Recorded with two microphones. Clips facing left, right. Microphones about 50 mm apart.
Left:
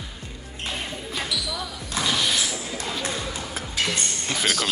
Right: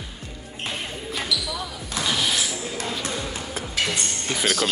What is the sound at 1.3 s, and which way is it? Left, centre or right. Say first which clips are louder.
Basketball bounce: right 4 dB; left.